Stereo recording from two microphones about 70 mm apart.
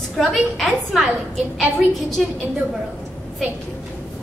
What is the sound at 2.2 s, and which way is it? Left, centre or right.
Speech, centre.